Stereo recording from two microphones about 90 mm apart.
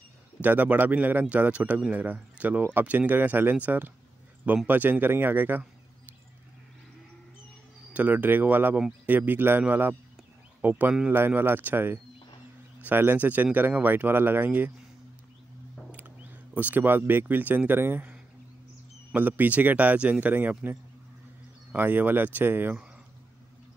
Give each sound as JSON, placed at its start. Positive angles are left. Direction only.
{"t": 0.4, "sound": "speech", "side_deg": -20}
{"t": 7.9, "sound": "speech", "side_deg": -20}
{"t": 15.9, "sound": "speech", "side_deg": -20}
{"t": 19.1, "sound": "speech", "side_deg": -20}
{"t": 21.7, "sound": "speech", "side_deg": -20}